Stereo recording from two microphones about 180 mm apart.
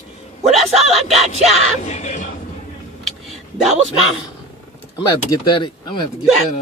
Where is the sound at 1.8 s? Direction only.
40° left (ahead or behind).